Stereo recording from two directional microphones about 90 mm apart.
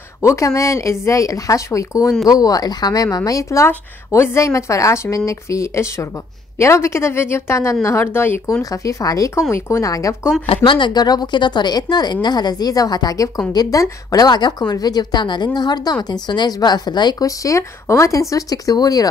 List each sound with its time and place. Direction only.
0.3 s speech: 35° left (ahead or behind)
8.6 s speech: 40° left (ahead or behind)
10.4 s speech: 75° left (ahead or behind); by 19.0 s 45° left (ahead or behind)